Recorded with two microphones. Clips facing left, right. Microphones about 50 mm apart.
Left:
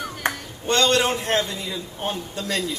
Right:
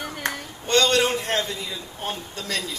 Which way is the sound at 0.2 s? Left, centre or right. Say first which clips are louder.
Left 3 dB; left.